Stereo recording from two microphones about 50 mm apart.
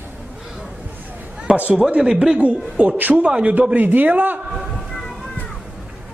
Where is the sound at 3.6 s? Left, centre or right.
Right.